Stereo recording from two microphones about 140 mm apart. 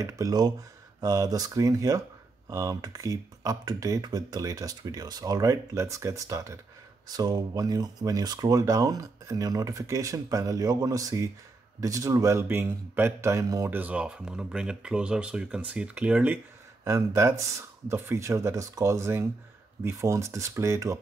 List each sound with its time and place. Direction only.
0.0 s speech: 25° right (ahead or behind)
16.8 s speech: 20° right (ahead or behind)